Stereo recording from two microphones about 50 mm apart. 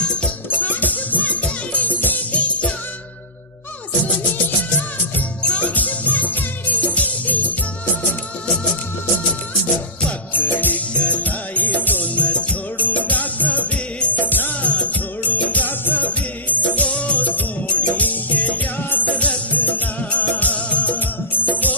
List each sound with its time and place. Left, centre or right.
0.0 s music: centre
0.6 s music: left
5.5 s music: left
10.3 s music: left